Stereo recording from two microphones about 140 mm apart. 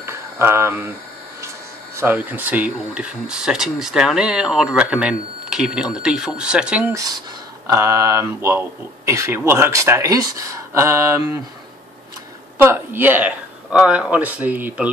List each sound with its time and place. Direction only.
0.0 s a sound: 20° right (ahead or behind)
2.0 s speech: 15° right (ahead or behind)
6.9 s speech: 25° right (ahead or behind)
12.5 s speech: 15° right (ahead or behind)